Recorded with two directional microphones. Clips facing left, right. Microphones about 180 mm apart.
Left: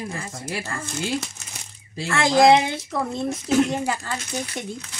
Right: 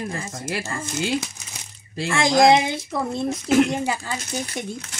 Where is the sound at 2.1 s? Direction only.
15° right (ahead or behind).